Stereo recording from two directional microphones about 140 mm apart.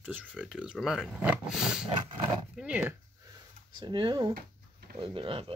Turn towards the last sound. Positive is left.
turn(degrees=-40)  # may be behind; listen again after turning